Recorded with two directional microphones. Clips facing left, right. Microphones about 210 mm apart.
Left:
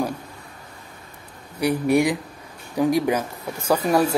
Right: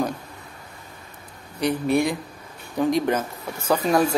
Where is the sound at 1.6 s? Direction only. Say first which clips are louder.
Left 2 dB; 10° left (ahead or behind).